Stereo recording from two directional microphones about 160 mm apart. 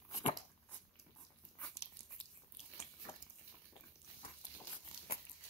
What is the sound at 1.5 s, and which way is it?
Biting, 10° left (ahead or behind).